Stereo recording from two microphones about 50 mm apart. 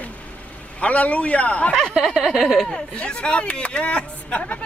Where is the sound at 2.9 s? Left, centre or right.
Left.